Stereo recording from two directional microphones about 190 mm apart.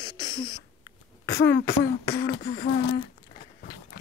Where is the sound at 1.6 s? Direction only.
50° left (ahead or behind).